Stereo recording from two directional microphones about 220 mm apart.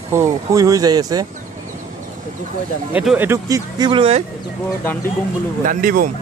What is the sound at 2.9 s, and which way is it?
Speech, 5° right (ahead or behind).